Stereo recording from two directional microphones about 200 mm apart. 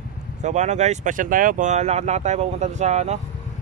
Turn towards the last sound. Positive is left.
turn(degrees=-35)  # may be behind; listen again after turning